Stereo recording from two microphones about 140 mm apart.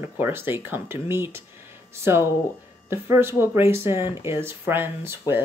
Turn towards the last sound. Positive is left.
turn(degrees=-15)  # may be behind; listen again after turning